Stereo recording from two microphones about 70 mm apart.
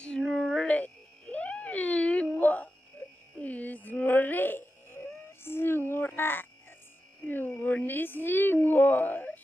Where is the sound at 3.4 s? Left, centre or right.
Left.